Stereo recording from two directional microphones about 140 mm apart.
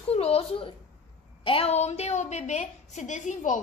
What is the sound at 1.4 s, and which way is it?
A woman's voice, 40° left (ahead or behind).